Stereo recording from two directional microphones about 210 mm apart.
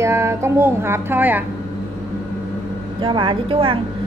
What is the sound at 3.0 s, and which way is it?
Speech, 25° right (ahead or behind).